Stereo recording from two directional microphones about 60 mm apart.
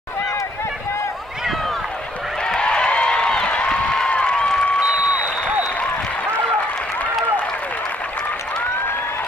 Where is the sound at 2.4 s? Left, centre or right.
Centre.